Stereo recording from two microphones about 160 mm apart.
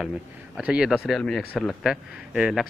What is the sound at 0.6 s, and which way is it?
Speech, 5° right (ahead or behind).